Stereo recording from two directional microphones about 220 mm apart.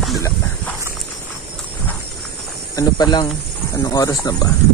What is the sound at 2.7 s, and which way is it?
Speech, 20° left (ahead or behind).